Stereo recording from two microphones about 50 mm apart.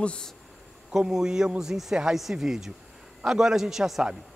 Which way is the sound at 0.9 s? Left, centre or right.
Centre.